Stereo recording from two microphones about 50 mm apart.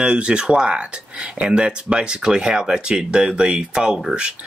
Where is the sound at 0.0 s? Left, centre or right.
Right.